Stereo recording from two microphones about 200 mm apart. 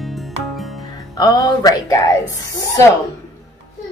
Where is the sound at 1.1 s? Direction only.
20° left (ahead or behind).